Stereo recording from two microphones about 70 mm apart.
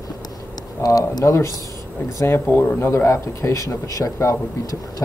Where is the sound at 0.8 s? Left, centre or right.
Left.